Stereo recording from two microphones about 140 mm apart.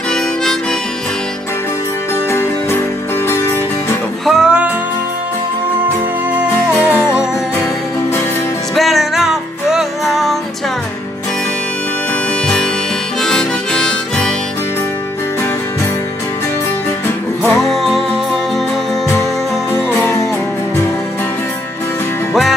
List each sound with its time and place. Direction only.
3.3 s music: 20° left (ahead or behind)
4.3 s music: 5° right (ahead or behind)
6.3 s music: 10° right (ahead or behind)
8.7 s music: centre (ahead or behind)
13.2 s harmonica: 5° left (ahead or behind)
17.5 s music: centre (ahead or behind)
19.9 s music: 15° left (ahead or behind)